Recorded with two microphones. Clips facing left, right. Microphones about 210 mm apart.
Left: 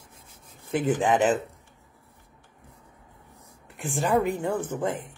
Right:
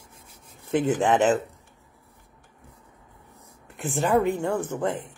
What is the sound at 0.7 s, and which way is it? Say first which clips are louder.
Speech: right 2 dB; centre (ahead or behind).